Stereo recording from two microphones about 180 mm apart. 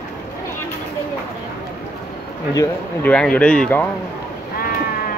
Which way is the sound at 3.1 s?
5° left (ahead or behind).